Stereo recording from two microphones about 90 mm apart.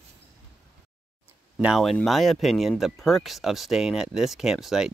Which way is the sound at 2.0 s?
Centre (ahead or behind).